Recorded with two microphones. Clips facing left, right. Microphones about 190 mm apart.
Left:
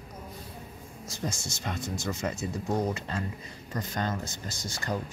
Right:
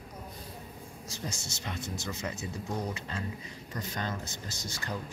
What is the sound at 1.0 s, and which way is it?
Speech, 50° left (ahead or behind).